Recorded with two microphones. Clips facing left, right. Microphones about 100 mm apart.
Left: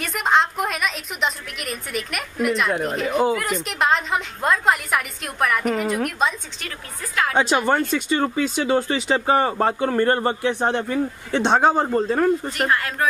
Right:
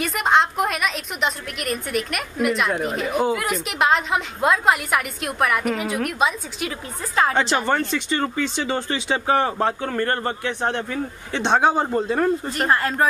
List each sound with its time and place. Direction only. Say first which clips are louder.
0.0 s a woman's voice: right 1 dB; centre (ahead or behind)
7.3 s a woman's voice: left 2 dB; 10° left (ahead or behind)
12.5 s speech: right 2 dB; 35° right (ahead or behind)